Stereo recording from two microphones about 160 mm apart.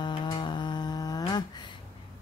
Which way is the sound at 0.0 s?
30° left (ahead or behind).